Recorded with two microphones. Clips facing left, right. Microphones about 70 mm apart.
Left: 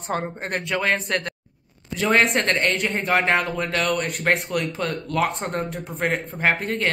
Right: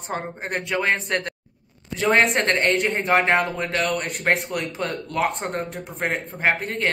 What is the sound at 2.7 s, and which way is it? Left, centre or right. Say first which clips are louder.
Speech: right 2 dB; centre.